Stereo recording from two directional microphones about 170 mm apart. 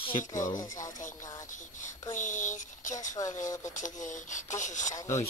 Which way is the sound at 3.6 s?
45° left (ahead or behind).